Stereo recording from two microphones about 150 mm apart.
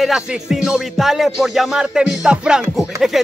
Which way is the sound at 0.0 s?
5° right (ahead or behind).